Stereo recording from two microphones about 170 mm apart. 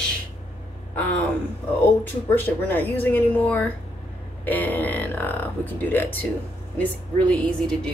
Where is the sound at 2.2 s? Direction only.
10° left (ahead or behind).